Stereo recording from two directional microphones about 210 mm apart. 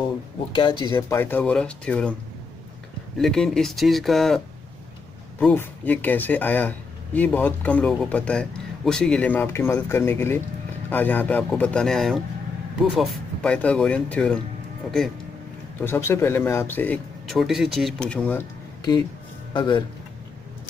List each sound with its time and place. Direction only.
0.6 s speech: 20° left (ahead or behind); by 2.1 s 5° left (ahead or behind)
3.2 s speech: centre (ahead or behind)
5.4 s speech: 10° left (ahead or behind)
15.8 s speech: 10° left (ahead or behind)
19.5 s speech: 20° left (ahead or behind)